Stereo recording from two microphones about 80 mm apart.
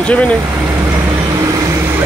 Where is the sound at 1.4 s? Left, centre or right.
Right.